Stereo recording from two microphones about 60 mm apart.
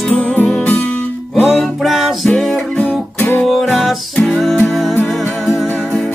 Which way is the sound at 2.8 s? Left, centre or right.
Left.